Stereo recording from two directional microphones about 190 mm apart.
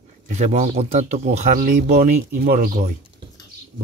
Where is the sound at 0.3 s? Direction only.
35° right (ahead or behind).